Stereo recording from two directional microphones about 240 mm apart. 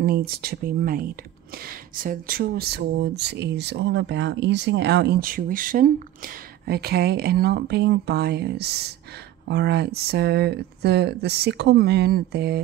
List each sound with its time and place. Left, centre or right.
0.0 s speech: right